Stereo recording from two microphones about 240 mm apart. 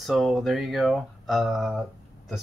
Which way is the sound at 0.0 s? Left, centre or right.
Centre.